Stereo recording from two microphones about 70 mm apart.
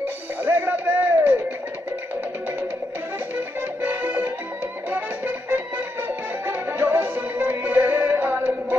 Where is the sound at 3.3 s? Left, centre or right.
Right.